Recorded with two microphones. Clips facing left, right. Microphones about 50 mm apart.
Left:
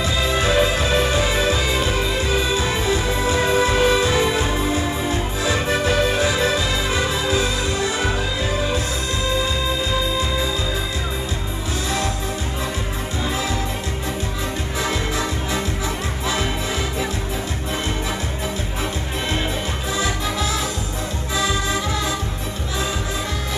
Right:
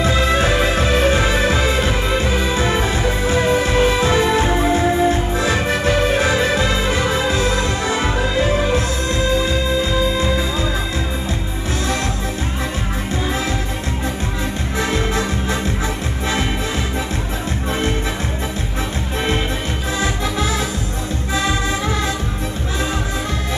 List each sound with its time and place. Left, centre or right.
0.0 s music: right
14.8 s music: right